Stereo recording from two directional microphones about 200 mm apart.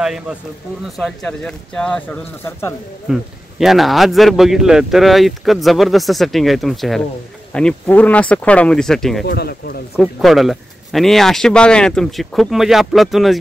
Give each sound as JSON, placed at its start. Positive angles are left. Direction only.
{"t": 0.0, "sound": "speech", "side_deg": 0}
{"t": 3.1, "sound": "speech", "side_deg": 0}
{"t": 9.2, "sound": "speech", "side_deg": 55}
{"t": 9.9, "sound": "speech", "side_deg": 0}